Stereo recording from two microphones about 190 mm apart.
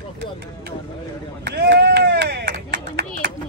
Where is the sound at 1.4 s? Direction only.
60° right (ahead or behind).